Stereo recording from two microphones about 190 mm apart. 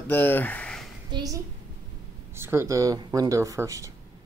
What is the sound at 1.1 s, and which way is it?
A child's voice, 20° right (ahead or behind).